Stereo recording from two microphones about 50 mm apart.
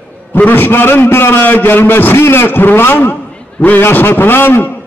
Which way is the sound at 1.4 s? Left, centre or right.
Left.